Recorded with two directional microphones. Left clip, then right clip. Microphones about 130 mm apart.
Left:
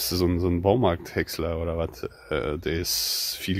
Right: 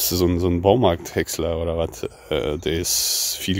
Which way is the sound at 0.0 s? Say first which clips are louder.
Right 4 dB; 35° right (ahead or behind).